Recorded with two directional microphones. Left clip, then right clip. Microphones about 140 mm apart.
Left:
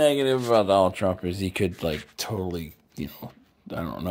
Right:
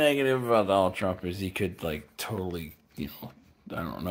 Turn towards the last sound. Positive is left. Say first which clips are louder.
# left 3 dB
turn(degrees=40)  # may be behind; listen again after turning